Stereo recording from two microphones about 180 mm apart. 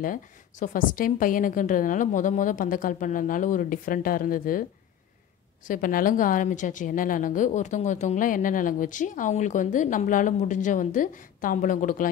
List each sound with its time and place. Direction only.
0.0 s a woman's voice: 50° left (ahead or behind)
5.7 s a woman's voice: 50° left (ahead or behind)